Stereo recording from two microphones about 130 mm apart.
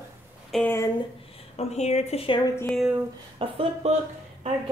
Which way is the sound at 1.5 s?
60° left (ahead or behind).